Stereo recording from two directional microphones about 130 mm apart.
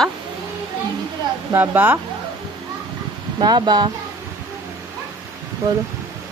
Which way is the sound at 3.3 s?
35° right (ahead or behind).